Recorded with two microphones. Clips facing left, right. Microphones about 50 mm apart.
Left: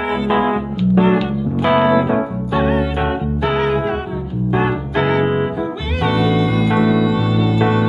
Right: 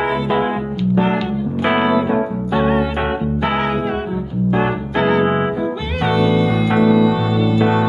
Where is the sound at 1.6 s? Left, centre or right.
Right.